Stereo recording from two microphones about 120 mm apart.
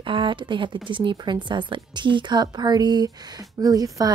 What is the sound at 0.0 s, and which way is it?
Speech, 45° right (ahead or behind).